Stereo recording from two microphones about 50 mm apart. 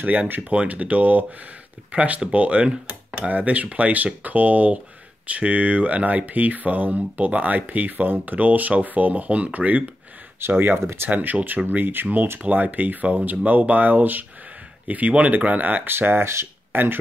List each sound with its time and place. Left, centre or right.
0.0 s speech: right
10.5 s speech: right
10.8 s speech: right
11.1 s speech: right
12.4 s speech: right
15.9 s speech: right
16.7 s speech: right